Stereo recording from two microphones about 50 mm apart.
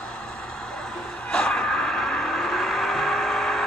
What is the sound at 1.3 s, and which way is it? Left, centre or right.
Vehicle, centre.